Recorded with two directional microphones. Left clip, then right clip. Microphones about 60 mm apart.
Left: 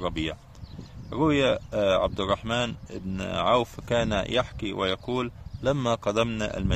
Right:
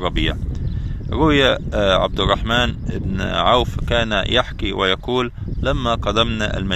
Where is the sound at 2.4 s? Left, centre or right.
Right.